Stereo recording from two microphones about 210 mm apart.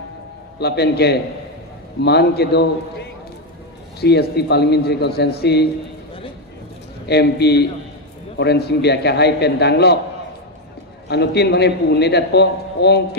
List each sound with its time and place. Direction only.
0.6 s a man's voice: 50° left (ahead or behind)
7.1 s a man's voice: 50° left (ahead or behind)
11.1 s a man's voice: 50° left (ahead or behind)